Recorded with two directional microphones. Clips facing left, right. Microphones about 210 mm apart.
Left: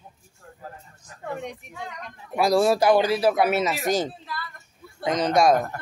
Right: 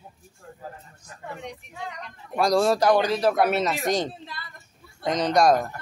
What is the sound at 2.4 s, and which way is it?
Speech, 5° left (ahead or behind).